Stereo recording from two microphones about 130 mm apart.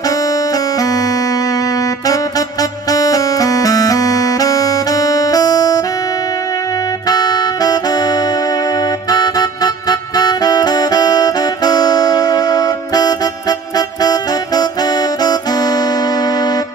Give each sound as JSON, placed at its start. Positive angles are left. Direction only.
{"t": 0.0, "sound": "music", "side_deg": 25}
{"t": 7.1, "sound": "music", "side_deg": 30}